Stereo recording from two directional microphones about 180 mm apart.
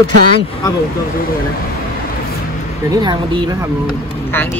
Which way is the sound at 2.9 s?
25° right (ahead or behind).